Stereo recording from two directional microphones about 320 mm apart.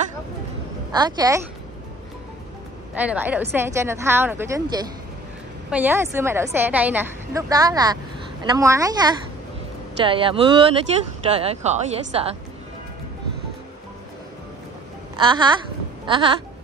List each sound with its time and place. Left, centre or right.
0.9 s a woman's voice: centre
2.9 s a woman's voice: centre
15.1 s a woman's voice: centre